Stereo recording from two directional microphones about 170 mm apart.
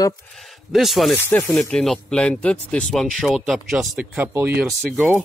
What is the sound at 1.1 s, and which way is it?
Speech, 10° left (ahead or behind).